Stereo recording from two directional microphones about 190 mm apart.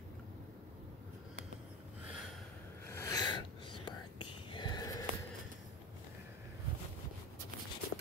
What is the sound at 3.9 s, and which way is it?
Whispering, 25° left (ahead or behind).